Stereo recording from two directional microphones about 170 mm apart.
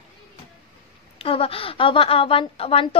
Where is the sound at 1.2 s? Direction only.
35° left (ahead or behind).